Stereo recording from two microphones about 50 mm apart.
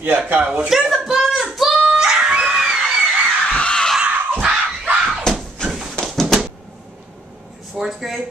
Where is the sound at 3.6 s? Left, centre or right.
Centre.